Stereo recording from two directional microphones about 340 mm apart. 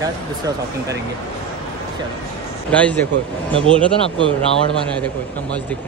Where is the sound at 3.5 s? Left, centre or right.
Centre.